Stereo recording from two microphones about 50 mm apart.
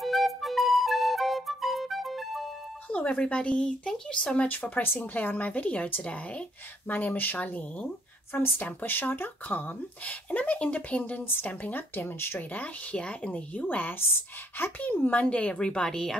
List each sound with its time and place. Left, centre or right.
0.0 s music: centre
2.9 s speech: left
4.4 s speech: left
6.9 s speech: left
8.3 s speech: left
8.6 s speech: left
12.4 s speech: left
15.2 s speech: centre